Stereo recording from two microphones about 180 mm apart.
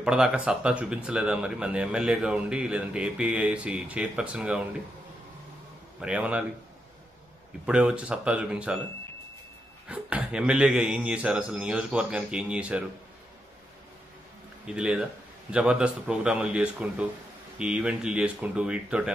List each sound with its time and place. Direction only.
0.0 s speech: 5° right (ahead or behind)
5.9 s speech: 5° right (ahead or behind)
7.6 s speech: 5° right (ahead or behind)
9.8 s speech: 5° right (ahead or behind)
14.7 s speech: 5° right (ahead or behind)